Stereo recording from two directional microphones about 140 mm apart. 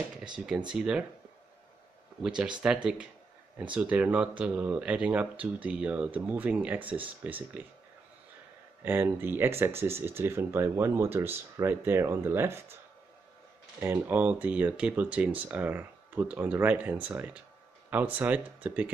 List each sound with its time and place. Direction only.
0.5 s speech: 5° right (ahead or behind)
2.2 s speech: 5° right (ahead or behind)
8.8 s speech: 15° right (ahead or behind)
13.7 s speech: 15° right (ahead or behind)